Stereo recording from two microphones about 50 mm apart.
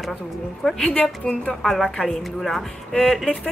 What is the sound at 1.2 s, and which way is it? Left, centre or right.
A woman's voice, centre.